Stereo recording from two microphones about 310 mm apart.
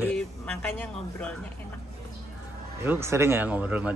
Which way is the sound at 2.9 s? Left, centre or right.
Centre.